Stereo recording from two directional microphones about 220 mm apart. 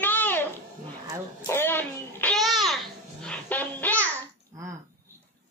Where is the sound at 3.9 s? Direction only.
10° right (ahead or behind).